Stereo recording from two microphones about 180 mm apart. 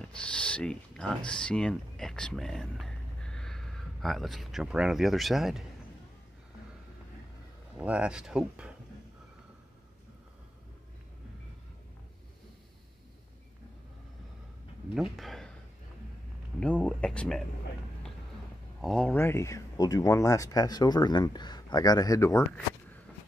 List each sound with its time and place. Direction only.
0.1 s speech: 5° left (ahead or behind)
7.8 s speech: 5° right (ahead or behind)
15.0 s speech: centre (ahead or behind)
16.5 s speech: 5° left (ahead or behind)
18.8 s speech: 5° left (ahead or behind)